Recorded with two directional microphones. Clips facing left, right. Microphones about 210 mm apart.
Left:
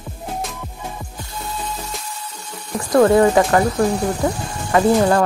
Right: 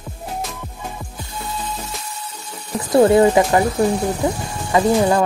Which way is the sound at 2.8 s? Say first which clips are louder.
Right 1 dB; 25° right (ahead or behind).